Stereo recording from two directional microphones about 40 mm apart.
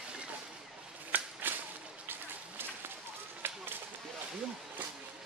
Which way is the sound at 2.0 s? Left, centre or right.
Right.